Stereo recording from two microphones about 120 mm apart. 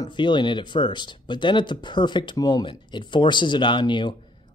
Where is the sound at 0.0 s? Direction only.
40° left (ahead or behind).